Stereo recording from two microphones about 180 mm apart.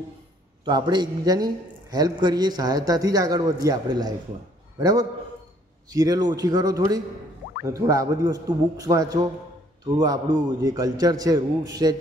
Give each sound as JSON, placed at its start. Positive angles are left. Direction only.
{"t": 0.7, "sound": "a man's voice", "side_deg": -25}